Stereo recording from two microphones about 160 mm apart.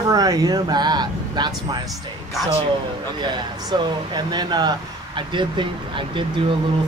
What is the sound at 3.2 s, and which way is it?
Speech, 25° right (ahead or behind).